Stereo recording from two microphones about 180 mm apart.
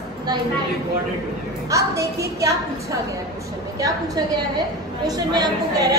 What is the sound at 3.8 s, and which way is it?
A woman's voice, 20° right (ahead or behind).